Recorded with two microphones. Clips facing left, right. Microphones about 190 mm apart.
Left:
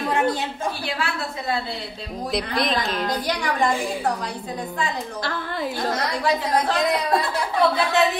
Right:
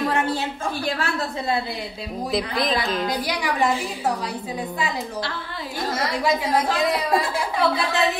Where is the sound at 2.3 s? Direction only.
Centre (ahead or behind).